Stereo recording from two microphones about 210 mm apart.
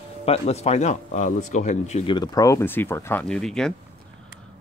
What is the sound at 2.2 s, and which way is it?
Speech, 20° left (ahead or behind).